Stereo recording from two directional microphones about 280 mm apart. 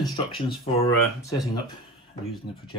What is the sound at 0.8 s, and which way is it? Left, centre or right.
Speech, centre.